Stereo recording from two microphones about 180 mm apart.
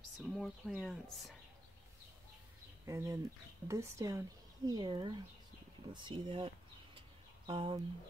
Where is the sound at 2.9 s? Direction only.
15° right (ahead or behind).